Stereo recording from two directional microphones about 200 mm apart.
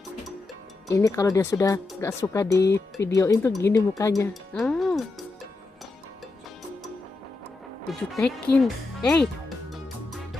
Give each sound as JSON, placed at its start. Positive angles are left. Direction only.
{"t": 0.8, "sound": "speech", "side_deg": 15}
{"t": 4.3, "sound": "speech", "side_deg": 0}
{"t": 8.0, "sound": "speech", "side_deg": 5}